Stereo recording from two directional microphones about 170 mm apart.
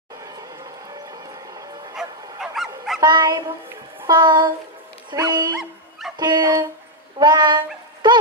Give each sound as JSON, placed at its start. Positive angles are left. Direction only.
{"t": 0.2, "sound": "music", "side_deg": -20}
{"t": 2.4, "sound": "honk", "side_deg": 0}
{"t": 3.0, "sound": "speech", "side_deg": -25}
{"t": 5.6, "sound": "dog", "side_deg": 0}
{"t": 6.1, "sound": "a woman's voice", "side_deg": -25}